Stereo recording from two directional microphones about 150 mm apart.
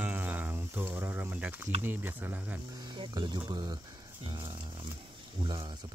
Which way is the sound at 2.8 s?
30° right (ahead or behind).